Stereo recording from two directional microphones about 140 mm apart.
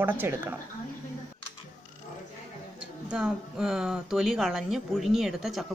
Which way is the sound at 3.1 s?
5° right (ahead or behind).